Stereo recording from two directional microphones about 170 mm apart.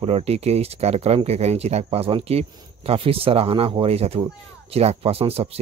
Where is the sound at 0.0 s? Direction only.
35° right (ahead or behind).